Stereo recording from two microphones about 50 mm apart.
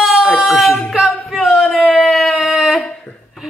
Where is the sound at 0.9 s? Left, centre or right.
Centre.